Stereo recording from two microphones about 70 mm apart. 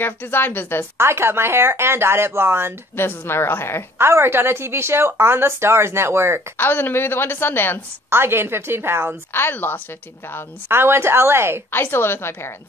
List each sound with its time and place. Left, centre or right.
0.0 s speech: left
0.9 s speech: right
3.0 s a woman's voice: left
4.0 s speech: right
6.5 s a woman's voice: left
8.1 s speech: right
9.3 s speech: left
10.7 s speech: right
11.7 s a woman's voice: left